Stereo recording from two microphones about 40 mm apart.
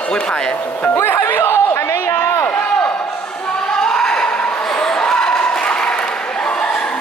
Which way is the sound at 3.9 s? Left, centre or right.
Centre.